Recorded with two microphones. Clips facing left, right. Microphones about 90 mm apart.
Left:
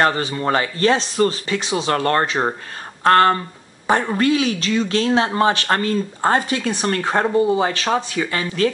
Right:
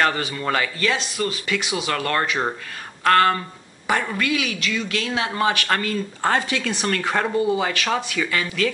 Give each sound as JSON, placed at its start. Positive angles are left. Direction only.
{"t": 0.0, "sound": "a woman's voice", "side_deg": 30}